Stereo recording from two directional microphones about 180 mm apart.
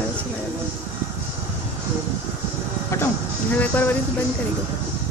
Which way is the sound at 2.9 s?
15° left (ahead or behind).